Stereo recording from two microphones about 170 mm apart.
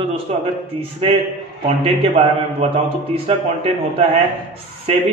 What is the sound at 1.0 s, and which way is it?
Speech, 30° right (ahead or behind).